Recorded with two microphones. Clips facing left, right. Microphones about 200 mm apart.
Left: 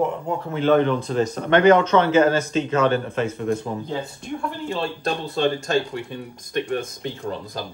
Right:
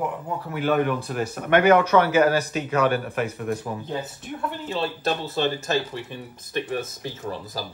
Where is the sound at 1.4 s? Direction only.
10° right (ahead or behind).